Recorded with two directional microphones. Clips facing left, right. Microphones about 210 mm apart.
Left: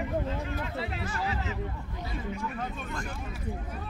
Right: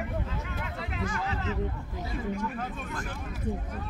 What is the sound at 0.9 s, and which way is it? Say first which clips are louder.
Music: right 2 dB; 35° left (ahead or behind).